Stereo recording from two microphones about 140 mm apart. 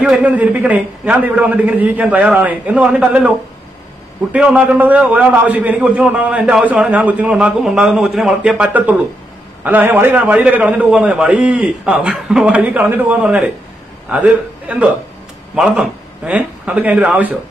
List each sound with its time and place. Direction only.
0.0 s a man's voice: 5° right (ahead or behind)